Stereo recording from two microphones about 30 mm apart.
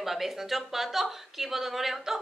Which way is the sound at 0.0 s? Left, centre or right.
Centre.